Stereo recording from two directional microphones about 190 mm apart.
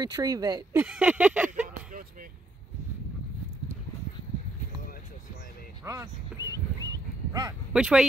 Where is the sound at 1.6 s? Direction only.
45° right (ahead or behind).